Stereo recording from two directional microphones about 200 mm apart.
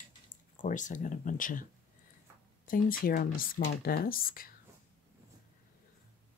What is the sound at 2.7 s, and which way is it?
Speech, 45° left (ahead or behind).